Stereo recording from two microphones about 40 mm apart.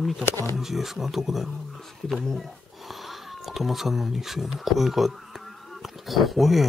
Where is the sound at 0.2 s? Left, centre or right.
Left.